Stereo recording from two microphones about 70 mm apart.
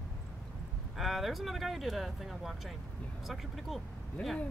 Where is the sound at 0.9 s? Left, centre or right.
Centre.